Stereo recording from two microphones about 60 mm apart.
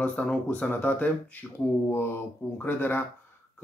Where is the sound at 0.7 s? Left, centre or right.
Left.